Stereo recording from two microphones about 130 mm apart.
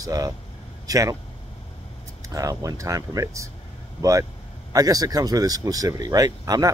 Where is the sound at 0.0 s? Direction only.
25° right (ahead or behind).